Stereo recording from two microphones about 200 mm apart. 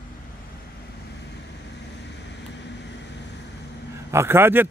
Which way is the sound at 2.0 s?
60° left (ahead or behind).